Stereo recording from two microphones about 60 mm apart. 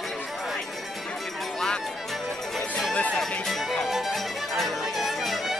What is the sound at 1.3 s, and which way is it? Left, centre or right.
Run, centre.